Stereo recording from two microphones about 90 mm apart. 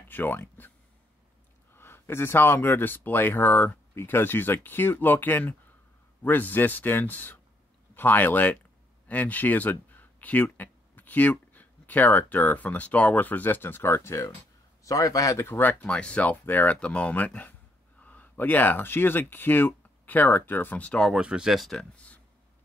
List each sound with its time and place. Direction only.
0.1 s speech: 20° left (ahead or behind)
1.7 s a man's voice: 25° left (ahead or behind)
15.4 s speech: 25° left (ahead or behind)
15.8 s speech: 10° left (ahead or behind)
21.1 s speech: 10° right (ahead or behind)
21.9 s a sound: 15° left (ahead or behind)